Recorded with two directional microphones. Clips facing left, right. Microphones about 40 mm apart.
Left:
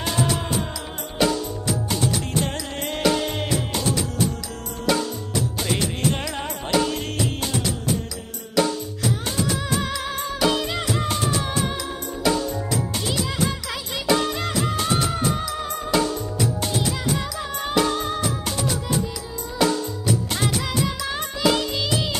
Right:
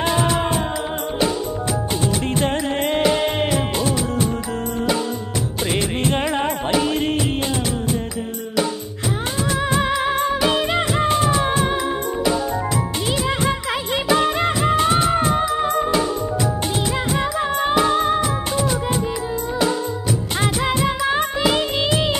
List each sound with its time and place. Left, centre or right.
0.0 s music: right
2.4 s music: right
5.7 s music of bollywood: right
9.6 s music: right
13.3 s music of bollywood: right
17.2 s music: right
20.6 s music: right